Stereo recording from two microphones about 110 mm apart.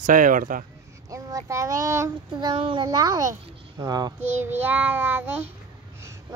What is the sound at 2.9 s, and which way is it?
Speech, 35° right (ahead or behind).